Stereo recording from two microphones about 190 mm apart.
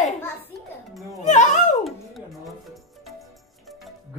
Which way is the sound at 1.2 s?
40° left (ahead or behind).